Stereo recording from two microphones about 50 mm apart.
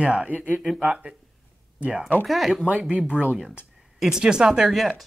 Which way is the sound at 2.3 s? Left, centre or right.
Centre.